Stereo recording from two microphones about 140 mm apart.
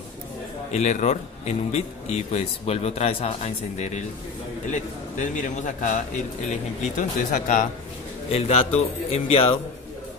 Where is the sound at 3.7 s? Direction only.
55° left (ahead or behind).